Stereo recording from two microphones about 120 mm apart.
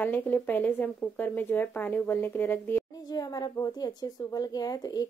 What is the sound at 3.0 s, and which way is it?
Speech, 30° left (ahead or behind).